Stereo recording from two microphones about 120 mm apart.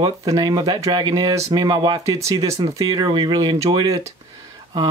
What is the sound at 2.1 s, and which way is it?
Speech, 25° right (ahead or behind).